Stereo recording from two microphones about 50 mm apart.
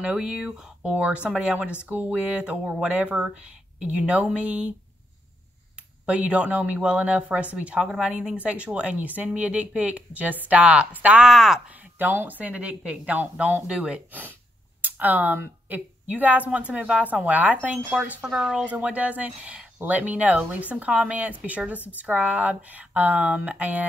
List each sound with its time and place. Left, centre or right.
0.0 s speech: centre
1.9 s a woman's voice: right
2.1 s speech: right
5.8 s speech: right
11.1 s speech: centre
11.7 s a woman's voice: right
14.8 s a woman's voice: right
18.2 s speech: centre